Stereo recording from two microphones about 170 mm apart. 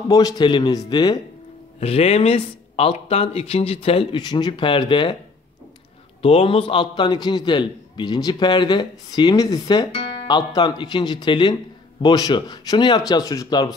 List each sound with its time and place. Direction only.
0.1 s a man's voice: 25° left (ahead or behind)
1.8 s speech: 35° left (ahead or behind)
6.2 s a man's voice: 35° left (ahead or behind)